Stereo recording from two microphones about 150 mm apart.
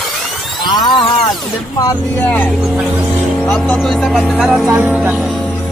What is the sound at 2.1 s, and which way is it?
Speech, 10° left (ahead or behind).